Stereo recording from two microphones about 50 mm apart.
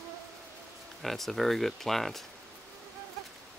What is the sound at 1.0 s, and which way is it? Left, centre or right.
Speech, centre.